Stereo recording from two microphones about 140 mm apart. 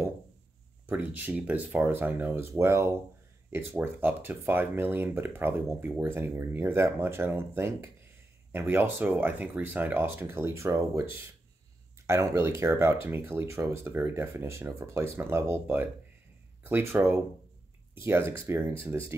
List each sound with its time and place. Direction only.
0.8 s speech: 15° right (ahead or behind)